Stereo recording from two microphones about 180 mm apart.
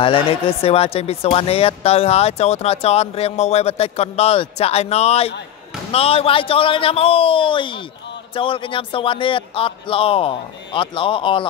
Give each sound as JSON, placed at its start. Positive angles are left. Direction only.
{"t": 0.0, "sound": "a man's voice", "side_deg": 30}